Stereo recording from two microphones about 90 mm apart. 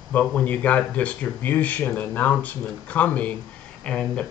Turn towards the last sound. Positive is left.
turn(degrees=10)  # may be behind; listen again after turning